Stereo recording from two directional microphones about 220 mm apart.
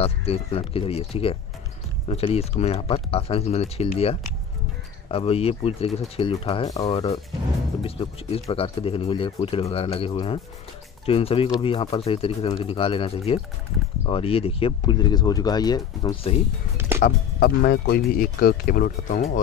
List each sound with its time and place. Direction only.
0.0 s speech: 25° left (ahead or behind)
17.0 s speech: 45° left (ahead or behind)